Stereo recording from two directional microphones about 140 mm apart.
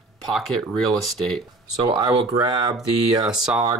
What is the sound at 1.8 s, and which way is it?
Speech, 30° right (ahead or behind).